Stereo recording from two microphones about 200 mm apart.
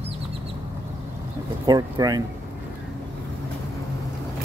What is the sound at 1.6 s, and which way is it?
Speech, 20° right (ahead or behind).